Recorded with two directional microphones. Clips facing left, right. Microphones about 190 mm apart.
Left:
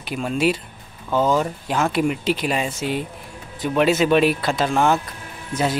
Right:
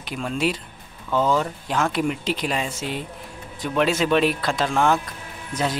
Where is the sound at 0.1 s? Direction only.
5° left (ahead or behind).